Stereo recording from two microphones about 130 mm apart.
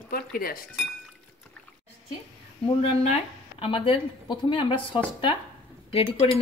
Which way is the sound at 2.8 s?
50° left (ahead or behind).